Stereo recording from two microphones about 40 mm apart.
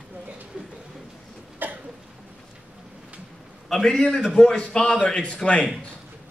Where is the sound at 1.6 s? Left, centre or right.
Right.